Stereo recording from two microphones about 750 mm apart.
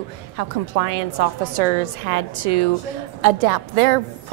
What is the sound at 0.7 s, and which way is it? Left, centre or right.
A woman's voice, right.